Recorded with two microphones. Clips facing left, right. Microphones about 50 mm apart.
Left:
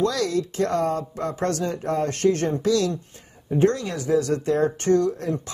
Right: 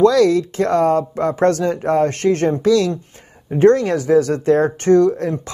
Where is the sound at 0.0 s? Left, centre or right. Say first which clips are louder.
Right 10 dB; right.